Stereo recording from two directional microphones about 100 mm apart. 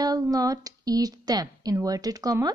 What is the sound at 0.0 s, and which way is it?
Speech, 40° right (ahead or behind).